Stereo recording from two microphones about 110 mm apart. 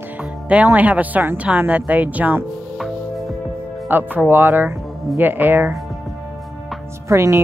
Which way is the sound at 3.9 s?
15° right (ahead or behind).